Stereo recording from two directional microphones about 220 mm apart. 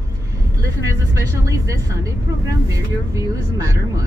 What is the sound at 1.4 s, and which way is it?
Speech, 15° right (ahead or behind).